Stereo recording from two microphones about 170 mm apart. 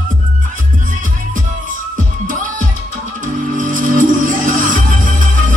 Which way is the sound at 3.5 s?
50° right (ahead or behind).